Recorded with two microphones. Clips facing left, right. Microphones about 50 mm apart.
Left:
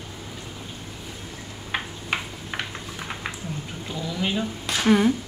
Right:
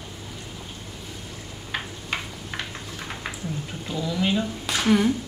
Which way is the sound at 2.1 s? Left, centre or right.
Centre.